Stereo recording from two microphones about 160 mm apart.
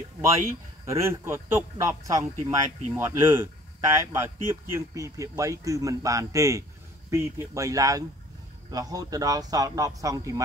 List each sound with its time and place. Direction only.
0.8 s speech: 20° right (ahead or behind)